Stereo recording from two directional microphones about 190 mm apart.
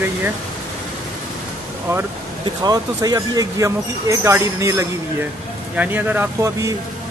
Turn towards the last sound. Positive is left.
turn(degrees=-15)  # may be behind; listen again after turning